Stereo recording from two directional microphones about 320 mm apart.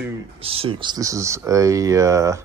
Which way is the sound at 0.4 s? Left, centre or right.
Centre.